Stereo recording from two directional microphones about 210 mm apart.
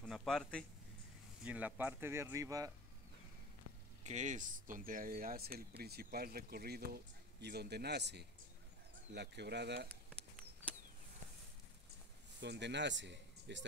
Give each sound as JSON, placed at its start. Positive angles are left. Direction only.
{"t": 0.0, "sound": "speech", "side_deg": 0}
{"t": 1.4, "sound": "speech", "side_deg": -5}
{"t": 4.0, "sound": "speech", "side_deg": -35}
{"t": 12.4, "sound": "speech", "side_deg": -55}